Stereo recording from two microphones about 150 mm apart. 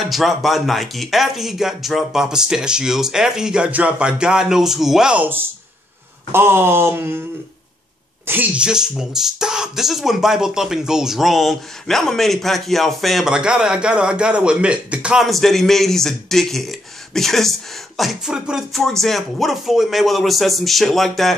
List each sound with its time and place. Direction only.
0.1 s speech: centre (ahead or behind)
8.3 s speech: 10° right (ahead or behind)